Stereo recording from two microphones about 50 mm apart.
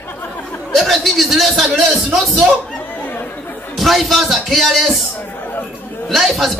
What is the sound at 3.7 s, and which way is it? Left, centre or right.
A man's voice, centre.